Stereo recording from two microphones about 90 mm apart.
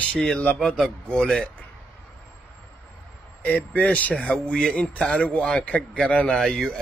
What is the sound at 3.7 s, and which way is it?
Speech, 15° left (ahead or behind).